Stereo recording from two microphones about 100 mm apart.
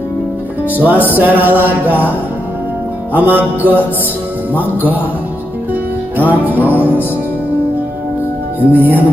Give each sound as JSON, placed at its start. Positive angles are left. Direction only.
{"t": 0.7, "sound": "music", "side_deg": -15}
{"t": 3.1, "sound": "music", "side_deg": -15}
{"t": 4.6, "sound": "music", "side_deg": 20}
{"t": 6.1, "sound": "music", "side_deg": -15}
{"t": 8.7, "sound": "music", "side_deg": -15}